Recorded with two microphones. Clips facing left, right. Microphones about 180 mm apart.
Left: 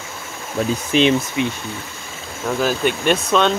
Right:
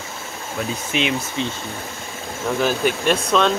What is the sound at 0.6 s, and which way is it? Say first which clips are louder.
Speech: left 7 dB; 40° left (ahead or behind).